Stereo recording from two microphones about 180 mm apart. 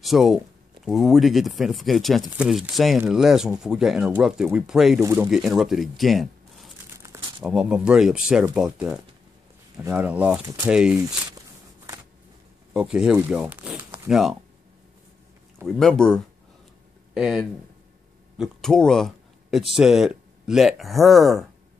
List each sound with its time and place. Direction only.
0.0 s speech: centre (ahead or behind)
5.3 s speech: centre (ahead or behind)
10.4 s speech: 15° right (ahead or behind)
10.7 s speech: 5° right (ahead or behind)
11.0 s walk: 20° right (ahead or behind)
12.7 s speech: 5° right (ahead or behind)
15.6 s speech: 5° left (ahead or behind)